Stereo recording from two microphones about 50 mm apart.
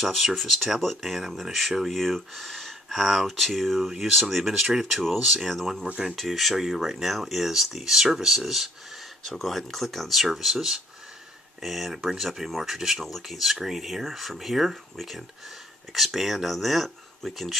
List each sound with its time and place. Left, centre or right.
0.0 s speech: centre